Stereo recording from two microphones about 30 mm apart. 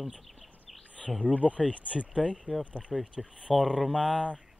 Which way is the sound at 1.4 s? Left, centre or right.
Right.